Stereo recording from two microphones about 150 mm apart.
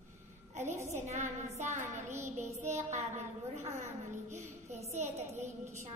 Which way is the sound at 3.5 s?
50° right (ahead or behind).